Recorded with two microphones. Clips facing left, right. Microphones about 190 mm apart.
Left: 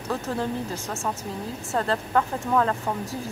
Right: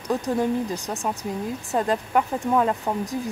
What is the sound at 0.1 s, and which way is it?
Speech, 15° right (ahead or behind).